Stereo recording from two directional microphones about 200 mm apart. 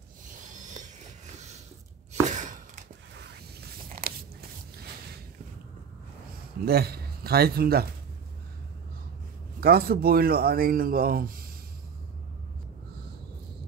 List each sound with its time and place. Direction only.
0.5 s a sound: 40° right (ahead or behind)
2.3 s chopping: 40° right (ahead or behind)
4.0 s biting: 50° right (ahead or behind)
6.6 s speech: 50° right (ahead or behind)
9.6 s speech: 50° right (ahead or behind)